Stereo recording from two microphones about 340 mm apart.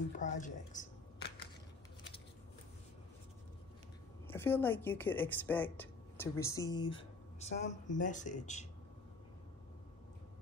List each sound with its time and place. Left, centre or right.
0.2 s speech: left
4.3 s a woman's voice: centre